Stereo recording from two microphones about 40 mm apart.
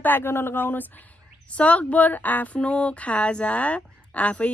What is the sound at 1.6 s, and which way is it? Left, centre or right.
Speech, left.